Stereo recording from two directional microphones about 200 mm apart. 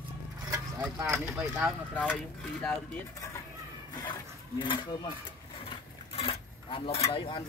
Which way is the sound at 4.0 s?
25° left (ahead or behind).